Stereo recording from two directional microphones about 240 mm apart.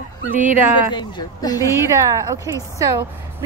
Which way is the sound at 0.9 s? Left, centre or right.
Centre.